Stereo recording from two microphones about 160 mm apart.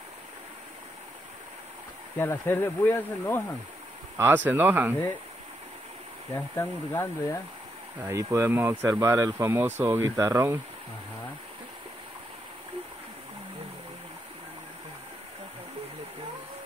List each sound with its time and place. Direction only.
2.1 s speech: 10° left (ahead or behind)
4.5 s speech: 10° right (ahead or behind)
6.3 s speech: 15° left (ahead or behind)
8.0 s speech: 20° right (ahead or behind)